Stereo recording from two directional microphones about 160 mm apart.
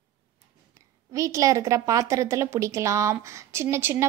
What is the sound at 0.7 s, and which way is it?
A woman's voice, 20° right (ahead or behind).